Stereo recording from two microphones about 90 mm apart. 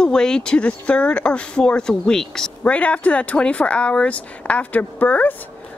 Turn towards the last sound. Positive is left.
turn(degrees=20)  # may be behind; listen again after turning